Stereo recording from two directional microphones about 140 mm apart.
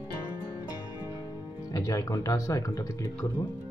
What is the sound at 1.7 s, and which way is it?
Speech, 25° left (ahead or behind).